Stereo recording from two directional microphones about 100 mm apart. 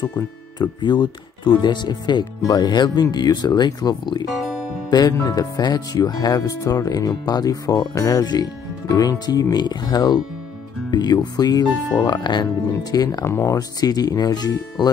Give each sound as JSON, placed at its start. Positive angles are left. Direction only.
{"t": 0.6, "sound": "speech", "side_deg": 50}
{"t": 13.3, "sound": "speech", "side_deg": 25}
{"t": 13.6, "sound": "speech", "side_deg": 40}